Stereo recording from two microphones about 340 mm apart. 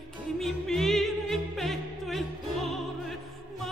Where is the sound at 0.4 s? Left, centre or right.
Centre.